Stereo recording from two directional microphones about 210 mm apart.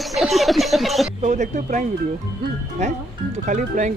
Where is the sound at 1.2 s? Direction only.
35° right (ahead or behind).